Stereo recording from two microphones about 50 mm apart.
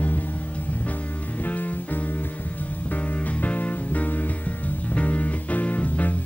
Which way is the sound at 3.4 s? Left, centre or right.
Left.